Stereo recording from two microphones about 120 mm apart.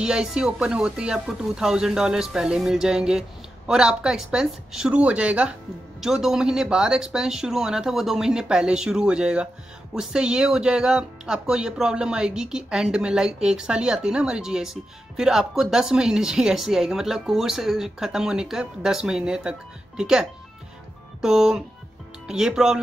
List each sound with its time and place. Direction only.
0.0 s speech: 5° right (ahead or behind)